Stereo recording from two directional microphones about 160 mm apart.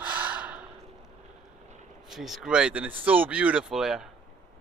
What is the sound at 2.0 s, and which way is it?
Speech, centre (ahead or behind).